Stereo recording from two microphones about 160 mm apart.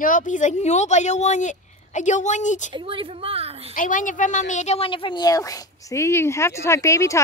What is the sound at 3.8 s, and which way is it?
A woman's voice, 55° left (ahead or behind).